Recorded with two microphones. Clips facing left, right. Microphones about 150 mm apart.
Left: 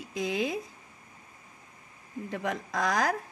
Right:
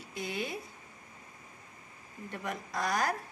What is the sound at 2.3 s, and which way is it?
Speech, 90° left.